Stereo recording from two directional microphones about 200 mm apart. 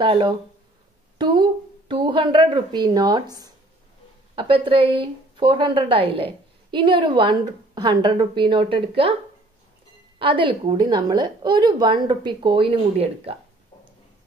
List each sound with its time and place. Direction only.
0.0 s a woman's voice: 25° right (ahead or behind)
10.1 s a woman's voice: 25° right (ahead or behind)